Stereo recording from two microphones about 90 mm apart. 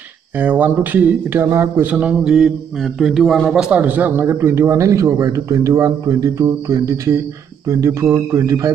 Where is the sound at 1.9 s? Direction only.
15° right (ahead or behind).